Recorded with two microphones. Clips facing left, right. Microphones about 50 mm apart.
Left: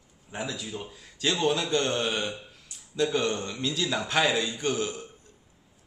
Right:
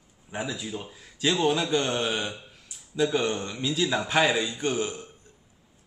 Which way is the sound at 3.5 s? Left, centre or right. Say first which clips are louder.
Right 3 dB; centre.